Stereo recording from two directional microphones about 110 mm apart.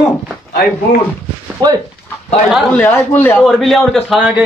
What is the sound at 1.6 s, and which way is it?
Speech, 40° right (ahead or behind).